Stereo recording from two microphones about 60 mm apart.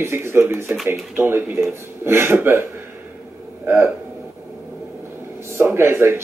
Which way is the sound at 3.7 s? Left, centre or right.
Right.